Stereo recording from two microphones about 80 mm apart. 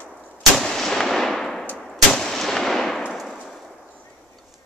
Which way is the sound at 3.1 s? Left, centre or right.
Centre.